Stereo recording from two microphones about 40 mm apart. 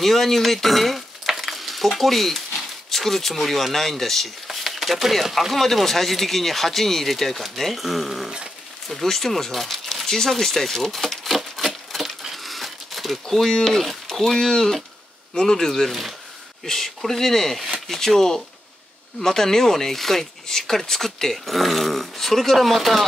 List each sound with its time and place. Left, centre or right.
0.0 s speech: centre
4.5 s a sound: centre
5.5 s speech: centre
8.8 s speech: centre
12.2 s crumpling: centre
15.3 s speech: centre
15.9 s speech: centre
16.6 s speech: centre